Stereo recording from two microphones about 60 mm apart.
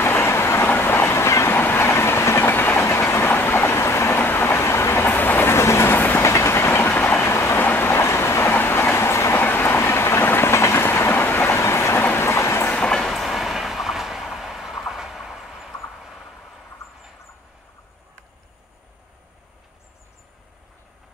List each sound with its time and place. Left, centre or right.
0.0 s train: left
4.2 s train: left
6.2 s train: left
7.2 s train: left
7.5 s train: left
7.9 s train: left
9.4 s train: left
12.0 s train: left
12.3 s train: left
12.7 s train: centre
13.0 s train: centre
14.9 s vehicle: centre
16.8 s squawk: left